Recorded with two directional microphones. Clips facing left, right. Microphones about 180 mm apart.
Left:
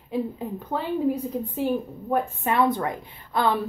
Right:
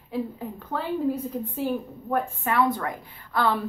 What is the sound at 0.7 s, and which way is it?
Speech, 15° left (ahead or behind).